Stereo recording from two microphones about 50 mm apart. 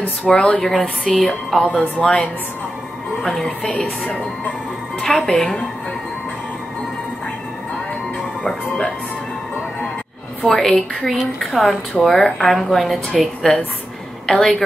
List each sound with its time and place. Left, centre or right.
0.3 s a woman's voice: centre
3.4 s a woman's voice: centre
5.0 s a woman's voice: centre
10.5 s a woman's voice: centre
13.5 s a woman's voice: centre